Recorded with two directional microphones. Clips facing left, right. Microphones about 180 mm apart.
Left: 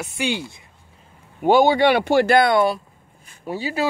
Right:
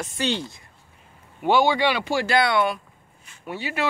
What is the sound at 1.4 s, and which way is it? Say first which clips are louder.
Speech: left 5 dB; 45° left (ahead or behind).